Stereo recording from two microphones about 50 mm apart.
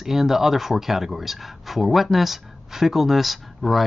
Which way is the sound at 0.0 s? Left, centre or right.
Centre.